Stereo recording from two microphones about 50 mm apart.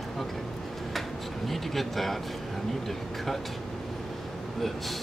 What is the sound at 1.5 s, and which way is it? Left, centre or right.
Speech, centre.